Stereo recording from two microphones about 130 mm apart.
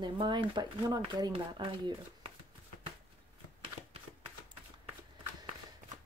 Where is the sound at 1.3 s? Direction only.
45° right (ahead or behind).